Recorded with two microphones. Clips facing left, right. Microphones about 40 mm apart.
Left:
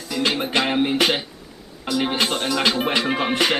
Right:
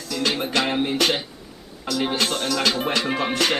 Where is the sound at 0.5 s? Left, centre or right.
Centre.